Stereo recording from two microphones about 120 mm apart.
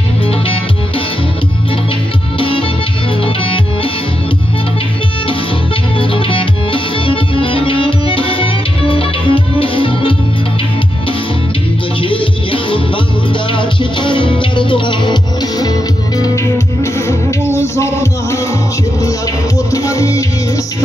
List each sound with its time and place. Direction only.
2.3 s music: 45° left (ahead or behind)
5.9 s music: 45° left (ahead or behind)
12.0 s music: 45° left (ahead or behind)
15.6 s music: 30° left (ahead or behind)
19.7 s music: 30° left (ahead or behind)